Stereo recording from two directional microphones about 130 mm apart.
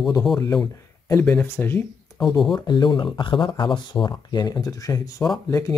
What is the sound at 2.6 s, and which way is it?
Speech, 35° left (ahead or behind).